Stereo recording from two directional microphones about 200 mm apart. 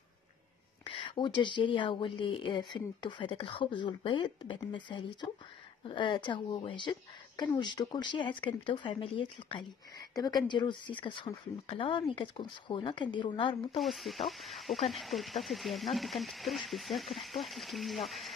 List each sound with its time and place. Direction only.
0.8 s speech: 25° left (ahead or behind)
13.7 s speech: centre (ahead or behind)